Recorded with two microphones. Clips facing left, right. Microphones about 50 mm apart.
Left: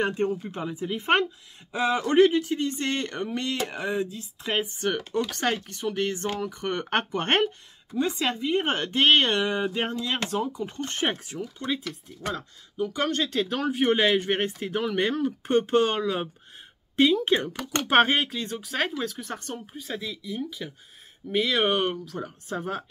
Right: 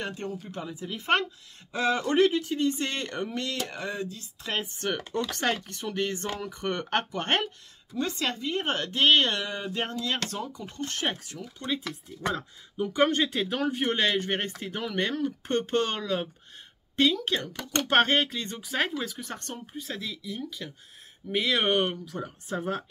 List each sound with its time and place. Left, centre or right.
0.0 s speech: left
4.7 s speech: centre
6.7 s speech: centre
11.6 s speech: centre
12.4 s speech: centre